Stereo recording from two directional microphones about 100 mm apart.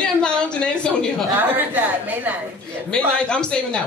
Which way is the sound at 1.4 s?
20° right (ahead or behind).